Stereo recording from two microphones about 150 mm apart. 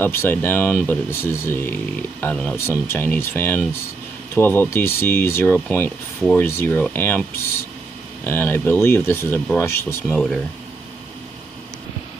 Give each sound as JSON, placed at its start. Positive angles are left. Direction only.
{"t": 0.0, "sound": "speech", "side_deg": 15}
{"t": 10.1, "sound": "speech", "side_deg": 0}